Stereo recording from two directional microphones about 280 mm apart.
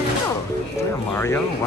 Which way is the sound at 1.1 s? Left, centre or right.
Centre.